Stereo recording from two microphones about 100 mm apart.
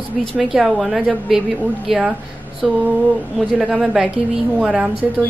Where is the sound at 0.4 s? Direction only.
Centre (ahead or behind).